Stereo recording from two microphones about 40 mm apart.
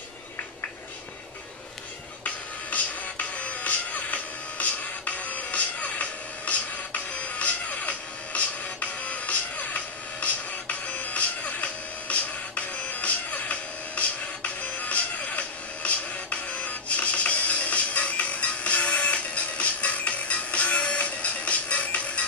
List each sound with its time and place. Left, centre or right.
2.2 s music: left